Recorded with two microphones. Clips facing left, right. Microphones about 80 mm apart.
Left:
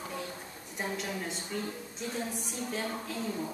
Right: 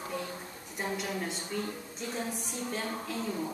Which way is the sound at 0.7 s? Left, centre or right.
Centre.